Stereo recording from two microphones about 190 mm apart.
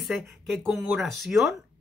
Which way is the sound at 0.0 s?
5° right (ahead or behind).